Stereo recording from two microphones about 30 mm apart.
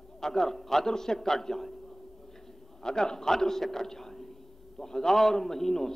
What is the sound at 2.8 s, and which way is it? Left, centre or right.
A man's voice, left.